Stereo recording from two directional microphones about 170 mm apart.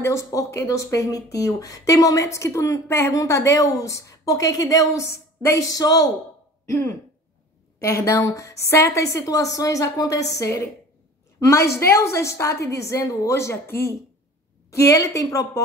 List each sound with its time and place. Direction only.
0.0 s a woman's voice: 20° left (ahead or behind)